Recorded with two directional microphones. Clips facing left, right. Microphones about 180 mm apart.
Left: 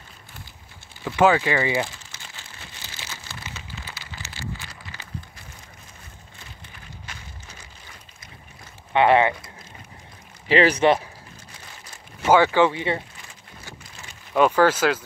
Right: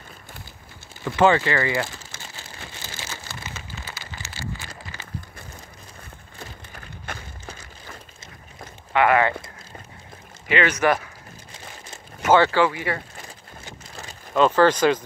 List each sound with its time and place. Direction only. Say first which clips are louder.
1.0 s speech: even; 5° left (ahead or behind)
2.1 s a sound: right 4 dB; 50° right (ahead or behind)
6.4 s a sound: right 6 dB; 50° right (ahead or behind)
8.9 s speech: left 1 dB; 25° left (ahead or behind)
10.5 s speech: left 3 dB; 35° left (ahead or behind)
12.3 s speech: left 1 dB; 15° left (ahead or behind)
14.3 s speech: right 1 dB; 10° left (ahead or behind)